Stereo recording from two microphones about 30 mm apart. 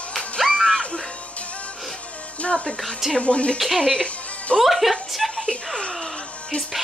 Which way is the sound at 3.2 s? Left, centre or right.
Left.